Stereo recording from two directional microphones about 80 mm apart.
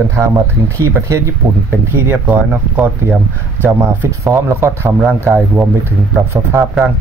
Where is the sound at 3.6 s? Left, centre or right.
Right.